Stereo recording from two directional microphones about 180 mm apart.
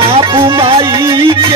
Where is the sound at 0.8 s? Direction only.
15° right (ahead or behind).